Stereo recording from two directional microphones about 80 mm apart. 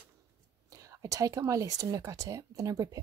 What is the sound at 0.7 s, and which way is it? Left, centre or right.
Speech, right.